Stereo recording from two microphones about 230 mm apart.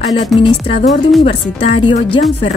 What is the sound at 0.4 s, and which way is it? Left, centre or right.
Music, left.